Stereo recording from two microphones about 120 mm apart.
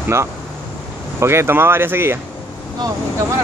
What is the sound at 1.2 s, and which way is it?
Speech, 20° right (ahead or behind).